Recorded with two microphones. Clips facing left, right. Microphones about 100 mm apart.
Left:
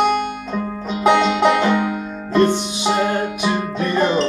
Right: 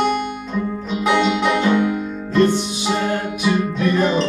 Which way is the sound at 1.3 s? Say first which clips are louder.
Left 1 dB; 55° left (ahead or behind).